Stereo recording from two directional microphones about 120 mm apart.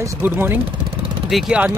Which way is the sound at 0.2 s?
20° right (ahead or behind).